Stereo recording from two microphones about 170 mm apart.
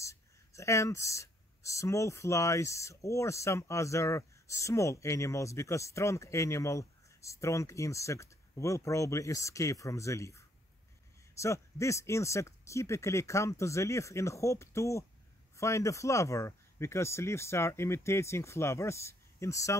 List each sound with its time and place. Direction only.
0.0 s speech: 15° left (ahead or behind)